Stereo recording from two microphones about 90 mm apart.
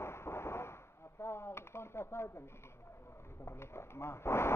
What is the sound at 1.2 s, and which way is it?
Speech, 30° left (ahead or behind).